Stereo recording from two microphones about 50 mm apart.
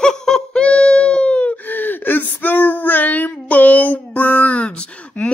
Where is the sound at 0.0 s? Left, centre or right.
Centre.